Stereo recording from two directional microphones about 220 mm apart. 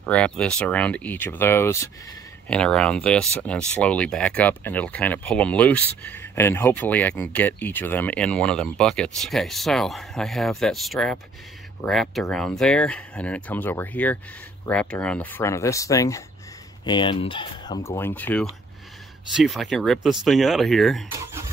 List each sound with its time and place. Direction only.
0.0 s speech: 5° left (ahead or behind)